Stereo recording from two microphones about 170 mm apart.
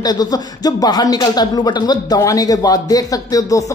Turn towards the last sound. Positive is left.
turn(degrees=20)  # may be behind; listen again after turning